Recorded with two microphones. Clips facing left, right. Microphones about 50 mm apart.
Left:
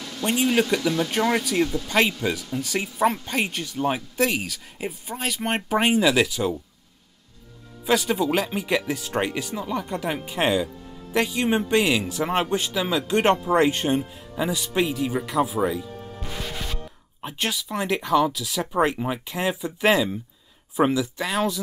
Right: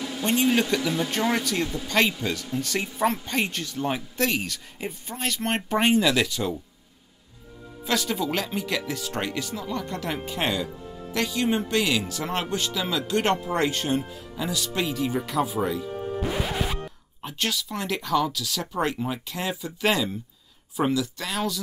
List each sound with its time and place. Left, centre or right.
0.2 s speech: centre
0.8 s speech: centre
7.8 s speech: centre
15.9 s music: right
16.2 s music: centre
17.2 s speech: centre